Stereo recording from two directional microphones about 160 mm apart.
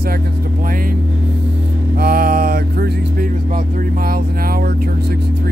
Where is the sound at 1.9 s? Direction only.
65° right (ahead or behind).